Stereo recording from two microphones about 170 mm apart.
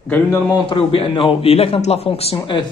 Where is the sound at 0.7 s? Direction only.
30° left (ahead or behind).